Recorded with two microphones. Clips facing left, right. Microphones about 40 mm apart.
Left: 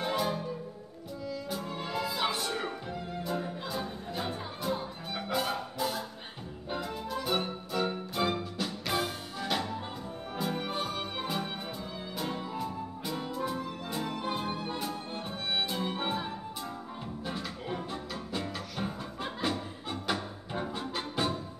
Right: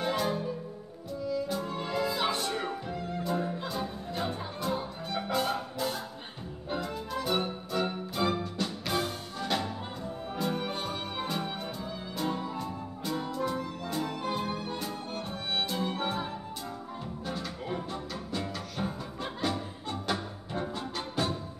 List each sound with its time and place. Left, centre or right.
0.0 s music: centre
18.3 s music: centre
19.4 s music: left
19.9 s music: centre